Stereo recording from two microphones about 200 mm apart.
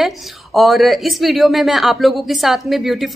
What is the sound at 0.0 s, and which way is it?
A woman's voice, centre (ahead or behind).